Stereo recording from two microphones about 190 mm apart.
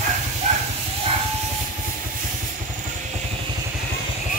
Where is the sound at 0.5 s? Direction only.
35° right (ahead or behind).